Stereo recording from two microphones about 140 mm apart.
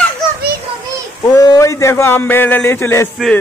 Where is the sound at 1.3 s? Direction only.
25° left (ahead or behind).